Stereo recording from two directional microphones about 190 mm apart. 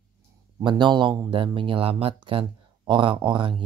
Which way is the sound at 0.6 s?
25° right (ahead or behind).